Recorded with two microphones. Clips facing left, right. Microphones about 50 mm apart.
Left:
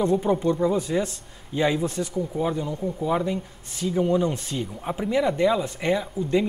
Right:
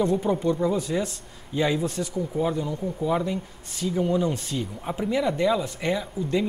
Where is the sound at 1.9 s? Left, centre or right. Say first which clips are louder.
Left 1 dB; left.